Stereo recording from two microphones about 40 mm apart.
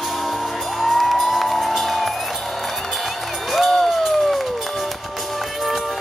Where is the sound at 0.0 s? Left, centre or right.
Centre.